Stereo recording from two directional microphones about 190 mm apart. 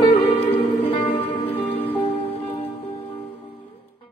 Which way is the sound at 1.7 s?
30° left (ahead or behind).